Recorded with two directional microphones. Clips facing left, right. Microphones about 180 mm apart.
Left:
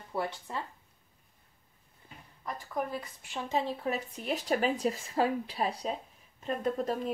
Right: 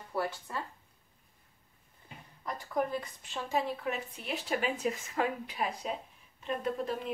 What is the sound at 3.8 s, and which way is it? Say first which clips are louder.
Speech: left 3 dB; 40° left (ahead or behind).